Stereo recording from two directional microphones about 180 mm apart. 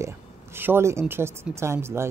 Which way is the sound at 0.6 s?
10° right (ahead or behind).